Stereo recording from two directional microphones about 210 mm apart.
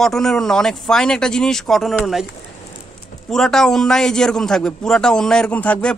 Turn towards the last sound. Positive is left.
turn(degrees=5)  # may be behind; listen again after turning